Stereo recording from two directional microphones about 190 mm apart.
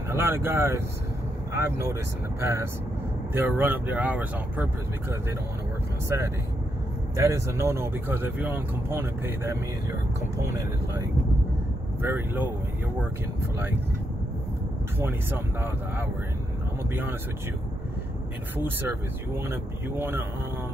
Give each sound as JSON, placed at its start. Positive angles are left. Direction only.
{"t": 0.1, "sound": "speech", "side_deg": -10}
{"t": 6.0, "sound": "speech", "side_deg": -15}
{"t": 15.0, "sound": "speech", "side_deg": -10}
{"t": 19.3, "sound": "speech", "side_deg": -15}